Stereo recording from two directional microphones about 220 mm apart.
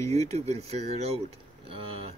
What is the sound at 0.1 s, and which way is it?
Speech, 30° right (ahead or behind).